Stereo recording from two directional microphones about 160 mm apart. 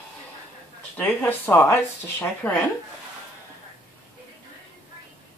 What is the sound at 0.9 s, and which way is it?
Speech, 10° left (ahead or behind).